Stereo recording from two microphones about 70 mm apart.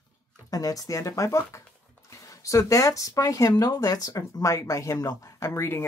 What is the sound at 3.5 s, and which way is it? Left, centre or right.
Speech, left.